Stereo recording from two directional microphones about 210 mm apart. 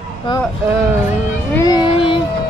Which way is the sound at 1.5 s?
15° left (ahead or behind).